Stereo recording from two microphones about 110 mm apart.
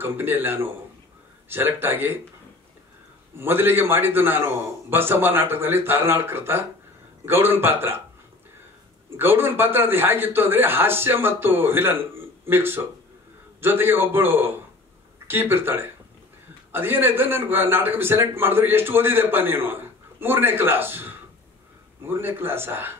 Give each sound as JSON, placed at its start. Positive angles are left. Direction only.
{"t": 0.0, "sound": "a man's voice", "side_deg": -20}
{"t": 3.3, "sound": "a man's voice", "side_deg": -20}
{"t": 9.1, "sound": "a man's voice", "side_deg": -20}